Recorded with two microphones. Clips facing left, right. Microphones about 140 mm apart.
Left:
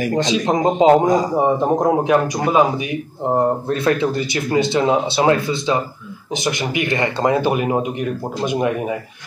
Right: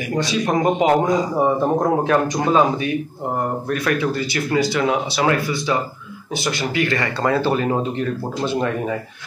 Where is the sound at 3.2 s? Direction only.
25° left (ahead or behind).